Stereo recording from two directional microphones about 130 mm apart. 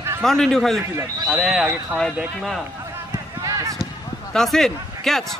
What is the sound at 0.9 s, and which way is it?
Speech, 20° right (ahead or behind).